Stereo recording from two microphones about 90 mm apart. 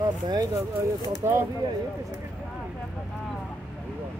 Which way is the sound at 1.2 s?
40° right (ahead or behind).